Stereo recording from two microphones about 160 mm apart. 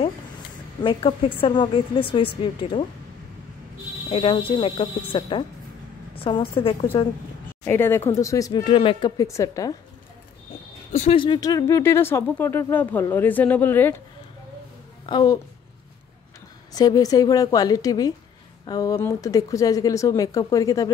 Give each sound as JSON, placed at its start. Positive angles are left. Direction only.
{"t": 0.8, "sound": "a woman's voice", "side_deg": 35}
{"t": 4.1, "sound": "a woman's voice", "side_deg": 35}
{"t": 7.6, "sound": "speech", "side_deg": 15}
{"t": 10.9, "sound": "speech", "side_deg": 50}
{"t": 11.1, "sound": "speech", "side_deg": 30}
{"t": 15.0, "sound": "speech", "side_deg": 25}
{"t": 16.7, "sound": "speech", "side_deg": 25}